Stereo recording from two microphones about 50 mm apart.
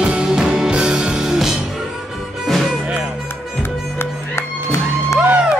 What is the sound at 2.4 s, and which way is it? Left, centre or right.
Music, centre.